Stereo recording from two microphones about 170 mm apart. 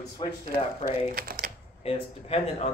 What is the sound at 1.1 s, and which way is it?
Speech, 60° right (ahead or behind).